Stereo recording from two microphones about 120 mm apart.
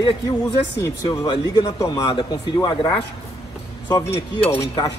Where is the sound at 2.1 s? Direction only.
40° left (ahead or behind).